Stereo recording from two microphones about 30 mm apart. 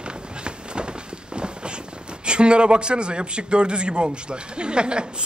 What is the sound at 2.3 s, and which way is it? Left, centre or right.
A man's voice, right.